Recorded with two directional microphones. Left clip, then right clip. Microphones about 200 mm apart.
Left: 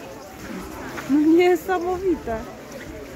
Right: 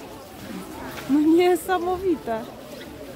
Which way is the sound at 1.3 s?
5° left (ahead or behind).